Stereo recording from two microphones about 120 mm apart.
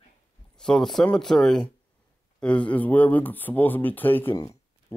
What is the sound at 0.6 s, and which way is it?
Speech, 5° left (ahead or behind).